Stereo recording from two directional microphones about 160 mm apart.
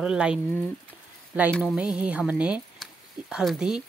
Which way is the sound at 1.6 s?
5° right (ahead or behind).